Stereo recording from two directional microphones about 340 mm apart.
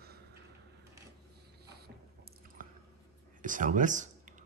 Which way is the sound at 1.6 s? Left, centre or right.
Right.